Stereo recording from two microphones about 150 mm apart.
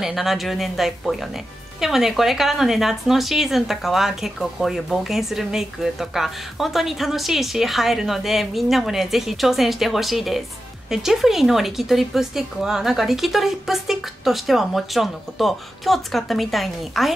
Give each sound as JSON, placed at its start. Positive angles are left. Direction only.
{"t": 0.0, "sound": "speech", "side_deg": 0}